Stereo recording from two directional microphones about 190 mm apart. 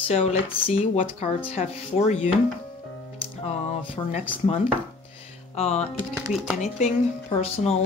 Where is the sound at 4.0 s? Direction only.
20° left (ahead or behind).